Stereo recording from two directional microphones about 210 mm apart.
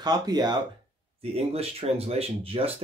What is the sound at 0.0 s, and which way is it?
Speech, 20° right (ahead or behind).